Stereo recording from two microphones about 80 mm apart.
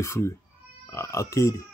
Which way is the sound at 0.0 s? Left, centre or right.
Left.